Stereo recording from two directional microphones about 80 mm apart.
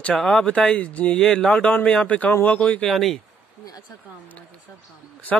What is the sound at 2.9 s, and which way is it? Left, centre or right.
Speech, centre.